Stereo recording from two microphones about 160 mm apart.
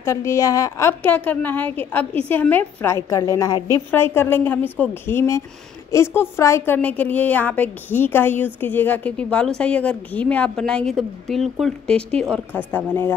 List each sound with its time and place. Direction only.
0.0 s a woman's voice: 15° left (ahead or behind)